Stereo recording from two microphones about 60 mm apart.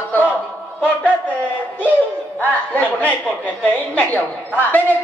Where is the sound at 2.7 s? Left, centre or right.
Left.